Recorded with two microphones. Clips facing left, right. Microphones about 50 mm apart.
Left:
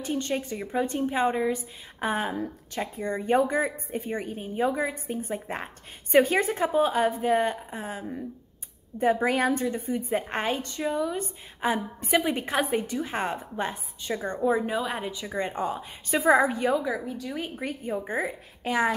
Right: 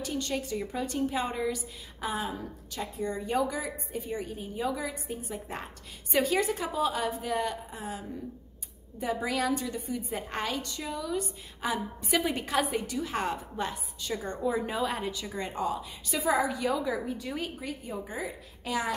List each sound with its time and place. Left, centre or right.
0.0 s a woman's voice: left
14.9 s a woman's voice: centre
15.3 s a woman's voice: left
17.0 s speech: centre
17.6 s a woman's voice: left